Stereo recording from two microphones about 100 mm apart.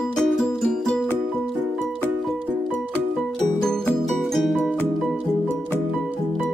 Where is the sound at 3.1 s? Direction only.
5° left (ahead or behind).